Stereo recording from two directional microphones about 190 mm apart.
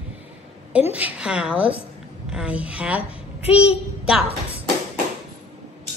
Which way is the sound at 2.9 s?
30° left (ahead or behind).